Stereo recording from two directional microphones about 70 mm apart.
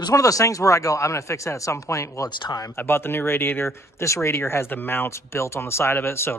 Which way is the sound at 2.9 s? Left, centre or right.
Left.